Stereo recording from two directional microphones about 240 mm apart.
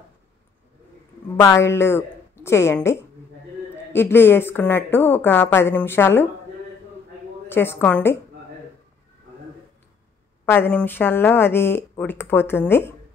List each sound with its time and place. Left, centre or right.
1.3 s a woman's voice: centre
7.4 s speech: centre
10.4 s speech: centre